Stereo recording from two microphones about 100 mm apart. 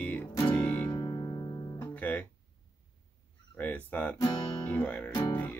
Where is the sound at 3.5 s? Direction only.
15° left (ahead or behind).